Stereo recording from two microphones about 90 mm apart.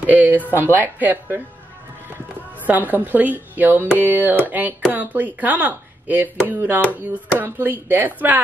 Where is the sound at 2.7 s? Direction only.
20° right (ahead or behind).